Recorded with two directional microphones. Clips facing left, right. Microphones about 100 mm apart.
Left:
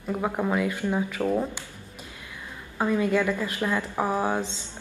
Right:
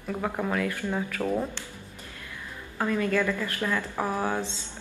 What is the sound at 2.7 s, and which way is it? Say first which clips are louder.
Speech: left 2 dB; 15° left (ahead or behind).